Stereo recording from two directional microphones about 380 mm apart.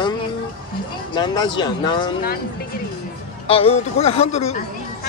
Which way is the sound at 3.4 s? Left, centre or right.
Centre.